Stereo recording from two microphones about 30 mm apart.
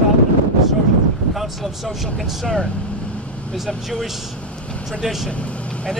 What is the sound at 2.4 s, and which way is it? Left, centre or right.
Speech, left.